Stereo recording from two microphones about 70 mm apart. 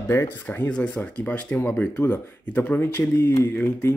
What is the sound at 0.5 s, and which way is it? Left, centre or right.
Speech, centre.